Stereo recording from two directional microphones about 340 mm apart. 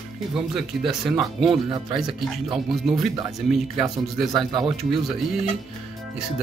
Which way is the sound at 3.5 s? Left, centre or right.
Centre.